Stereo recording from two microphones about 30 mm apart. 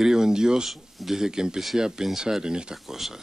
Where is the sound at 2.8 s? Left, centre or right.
Centre.